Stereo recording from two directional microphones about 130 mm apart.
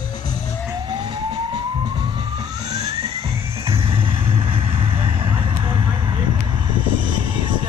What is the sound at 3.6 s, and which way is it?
Vehicle, 45° right (ahead or behind).